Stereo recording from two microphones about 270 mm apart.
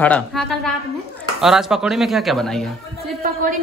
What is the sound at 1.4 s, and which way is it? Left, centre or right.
Speech, centre.